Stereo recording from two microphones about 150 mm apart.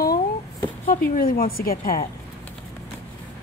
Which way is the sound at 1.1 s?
80° left.